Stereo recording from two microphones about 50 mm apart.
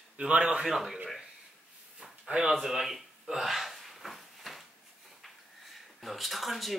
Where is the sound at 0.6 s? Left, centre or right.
Centre.